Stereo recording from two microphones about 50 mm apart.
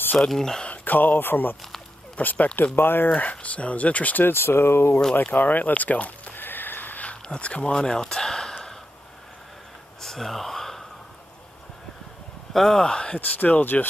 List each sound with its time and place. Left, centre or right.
0.3 s speech: centre
0.7 s speech: left
2.1 s speech: left
3.2 s speech: left
4.3 s speech: left
5.2 s speech: left
6.3 s a sound: left
7.2 s a sound: left
10.0 s a sound: centre
12.5 s speech: centre
13.2 s speech: left